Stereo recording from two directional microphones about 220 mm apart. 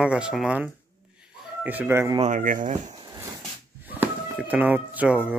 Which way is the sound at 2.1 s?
35° right (ahead or behind).